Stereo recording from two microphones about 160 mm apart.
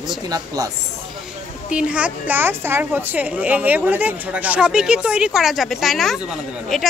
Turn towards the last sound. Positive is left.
turn(degrees=0)  # may be behind; listen again after turning